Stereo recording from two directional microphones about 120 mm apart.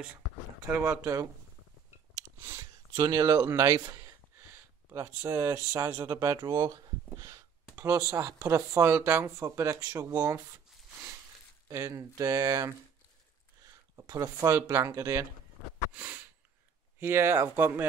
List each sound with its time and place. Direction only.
0.8 s speech: 25° right (ahead or behind)
3.0 s speech: 30° right (ahead or behind)
11.7 s speech: 25° right (ahead or behind)
13.9 s speech: 30° right (ahead or behind)
15.9 s a sound: 15° right (ahead or behind)
17.0 s speech: 20° right (ahead or behind)